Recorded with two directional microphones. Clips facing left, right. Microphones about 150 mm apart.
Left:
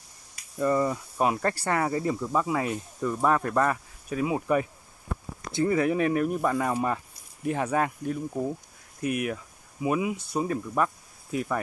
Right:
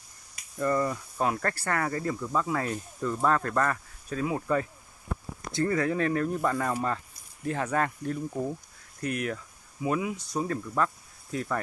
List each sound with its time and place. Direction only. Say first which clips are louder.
0.6 s speech: left 2 dB; 15° left (ahead or behind)